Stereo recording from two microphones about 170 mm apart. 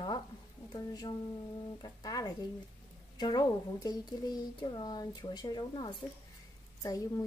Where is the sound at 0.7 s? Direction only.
25° left (ahead or behind).